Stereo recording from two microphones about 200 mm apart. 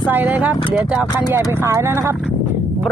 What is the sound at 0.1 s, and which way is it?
Speech, 10° right (ahead or behind).